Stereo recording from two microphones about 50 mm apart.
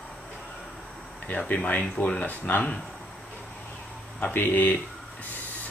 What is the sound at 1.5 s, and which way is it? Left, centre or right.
Speech, left.